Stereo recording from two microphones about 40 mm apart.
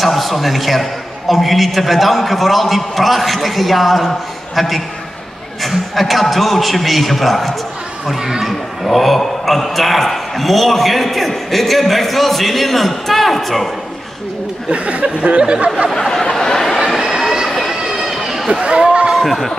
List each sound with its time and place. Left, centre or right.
0.0 s a man's voice: centre
8.1 s speech: centre
8.5 s a man's voice: centre
14.7 s speech: right
16.1 s a sound: centre
17.0 s a sound: centre
18.5 s chatter: right
19.1 s speech: centre